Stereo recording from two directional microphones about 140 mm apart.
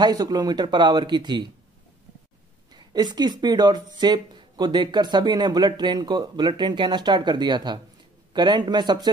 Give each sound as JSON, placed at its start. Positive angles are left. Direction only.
{"t": 0.0, "sound": "speech", "side_deg": -30}
{"t": 2.7, "sound": "speech", "side_deg": -30}